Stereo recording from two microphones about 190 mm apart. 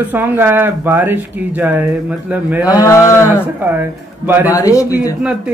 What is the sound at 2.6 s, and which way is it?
Speech, 15° left (ahead or behind).